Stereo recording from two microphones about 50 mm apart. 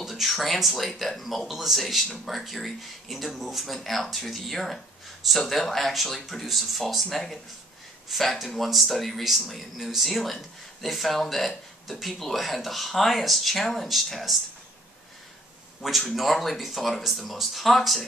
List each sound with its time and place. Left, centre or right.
0.0 s speech: centre
15.8 s speech: centre